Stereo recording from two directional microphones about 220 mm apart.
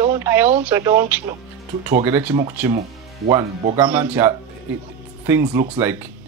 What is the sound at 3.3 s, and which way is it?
Speech, 25° right (ahead or behind).